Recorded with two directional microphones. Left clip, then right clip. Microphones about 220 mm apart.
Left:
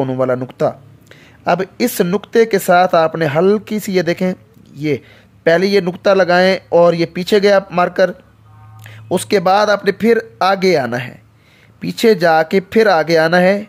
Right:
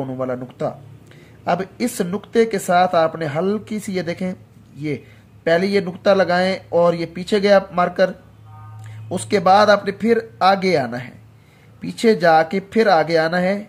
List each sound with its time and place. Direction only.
0.0 s speech: 45° left (ahead or behind)